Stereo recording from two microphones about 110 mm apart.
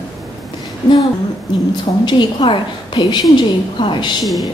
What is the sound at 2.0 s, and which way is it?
A woman's voice, 45° left (ahead or behind).